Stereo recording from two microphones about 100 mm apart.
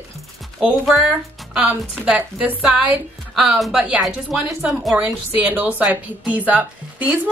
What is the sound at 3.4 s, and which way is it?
Speech, centre (ahead or behind).